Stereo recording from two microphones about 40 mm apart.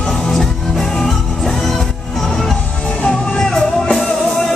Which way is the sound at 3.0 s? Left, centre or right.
Left.